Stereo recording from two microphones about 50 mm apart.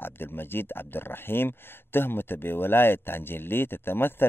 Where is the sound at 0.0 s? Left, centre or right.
Left.